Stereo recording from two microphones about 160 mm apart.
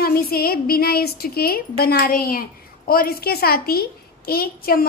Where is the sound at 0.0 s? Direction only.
70° left (ahead or behind).